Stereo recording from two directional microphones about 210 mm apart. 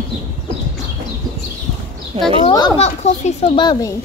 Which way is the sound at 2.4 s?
25° left (ahead or behind).